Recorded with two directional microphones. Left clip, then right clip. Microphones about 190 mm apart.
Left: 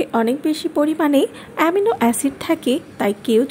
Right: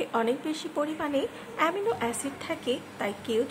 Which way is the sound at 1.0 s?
40° left (ahead or behind).